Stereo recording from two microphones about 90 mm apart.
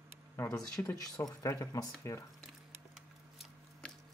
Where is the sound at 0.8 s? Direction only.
35° left (ahead or behind).